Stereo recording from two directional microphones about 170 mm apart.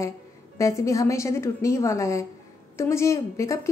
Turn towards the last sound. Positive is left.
turn(degrees=15)  # may be behind; listen again after turning